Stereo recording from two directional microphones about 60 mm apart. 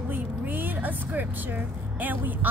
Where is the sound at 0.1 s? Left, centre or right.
Right.